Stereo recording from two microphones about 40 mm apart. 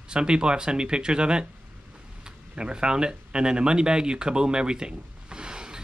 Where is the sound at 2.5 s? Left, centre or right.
Right.